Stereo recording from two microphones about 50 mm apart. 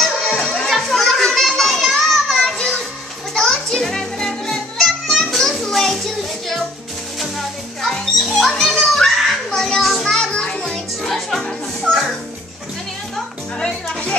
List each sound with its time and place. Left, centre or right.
0.0 s music: centre
0.7 s children playing: centre
3.3 s music: centre
8.4 s children playing: centre
9.6 s music: centre
10.7 s music: centre
13.6 s speech: centre